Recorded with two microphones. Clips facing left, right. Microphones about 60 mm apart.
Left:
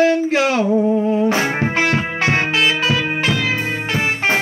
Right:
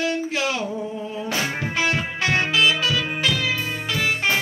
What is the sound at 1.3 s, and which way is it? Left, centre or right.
Music, left.